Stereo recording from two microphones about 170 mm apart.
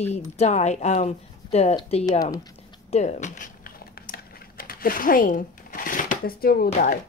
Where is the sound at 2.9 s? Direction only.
45° left (ahead or behind); by 6.7 s 60° left (ahead or behind).